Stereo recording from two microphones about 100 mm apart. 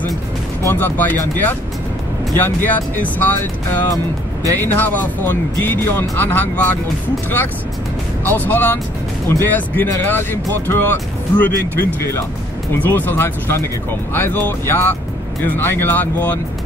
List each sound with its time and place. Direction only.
0.7 s speech: 20° left (ahead or behind)
8.3 s speech: 15° left (ahead or behind)